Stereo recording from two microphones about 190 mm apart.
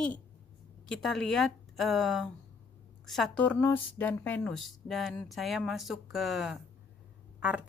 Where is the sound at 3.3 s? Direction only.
10° left (ahead or behind).